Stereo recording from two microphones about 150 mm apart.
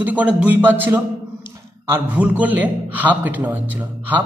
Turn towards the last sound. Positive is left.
turn(degrees=-10)  # may be behind; listen again after turning